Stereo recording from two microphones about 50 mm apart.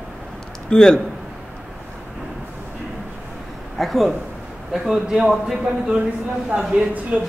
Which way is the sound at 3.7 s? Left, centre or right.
Centre.